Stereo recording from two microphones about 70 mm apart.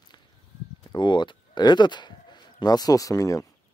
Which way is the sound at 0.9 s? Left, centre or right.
Left.